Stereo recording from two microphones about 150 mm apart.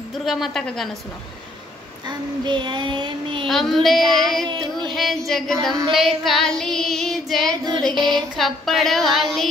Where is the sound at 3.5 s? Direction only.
Centre (ahead or behind).